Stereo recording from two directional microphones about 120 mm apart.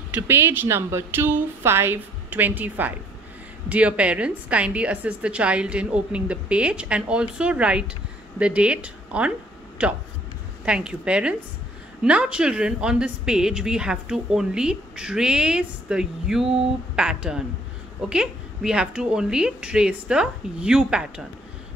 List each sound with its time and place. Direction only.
0.1 s speech: 20° right (ahead or behind)